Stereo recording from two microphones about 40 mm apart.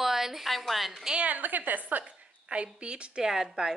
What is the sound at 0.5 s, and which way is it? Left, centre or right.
Speech, centre.